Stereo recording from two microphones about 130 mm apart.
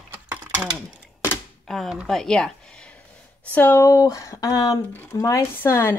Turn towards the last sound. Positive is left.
turn(degrees=20)  # may be behind; listen again after turning